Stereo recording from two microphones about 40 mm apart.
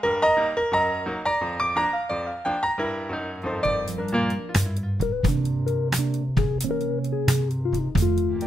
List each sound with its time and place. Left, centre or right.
0.0 s music: left
4.3 s music: centre